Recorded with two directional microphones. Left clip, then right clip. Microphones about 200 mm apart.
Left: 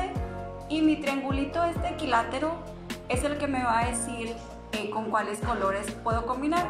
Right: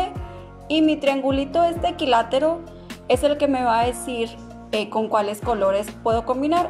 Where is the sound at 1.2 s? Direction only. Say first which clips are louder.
Right 8 dB; 45° right (ahead or behind).